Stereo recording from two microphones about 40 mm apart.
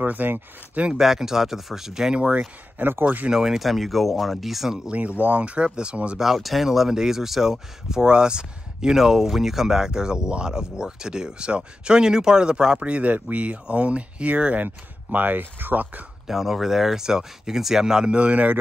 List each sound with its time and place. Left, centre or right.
0.0 s speech: right
0.9 s speech: centre
2.1 s speech: right
2.8 s speech: right
3.3 s speech: centre
3.6 s speech: centre
4.9 s speech: right
6.1 s speech: centre; by 16.1 s right
16.3 s speech: centre
18.1 s speech: right